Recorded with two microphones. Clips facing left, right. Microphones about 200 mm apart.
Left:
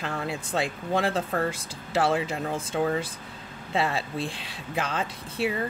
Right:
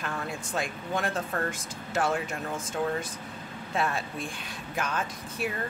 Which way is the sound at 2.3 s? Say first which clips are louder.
Left 4 dB; 30° left (ahead or behind).